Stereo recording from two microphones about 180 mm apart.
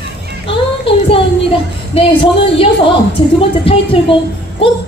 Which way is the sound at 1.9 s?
30° left (ahead or behind).